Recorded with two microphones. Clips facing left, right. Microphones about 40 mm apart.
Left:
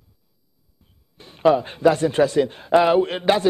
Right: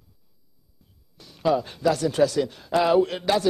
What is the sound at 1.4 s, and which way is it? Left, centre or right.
A man's voice, left.